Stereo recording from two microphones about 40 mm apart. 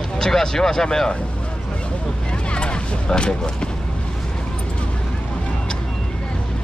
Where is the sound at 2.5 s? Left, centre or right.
Left.